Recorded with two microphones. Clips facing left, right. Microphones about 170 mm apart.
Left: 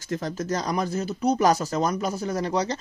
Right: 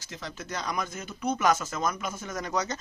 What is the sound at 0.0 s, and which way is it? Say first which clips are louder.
Speech: left 11 dB; 50° left (ahead or behind).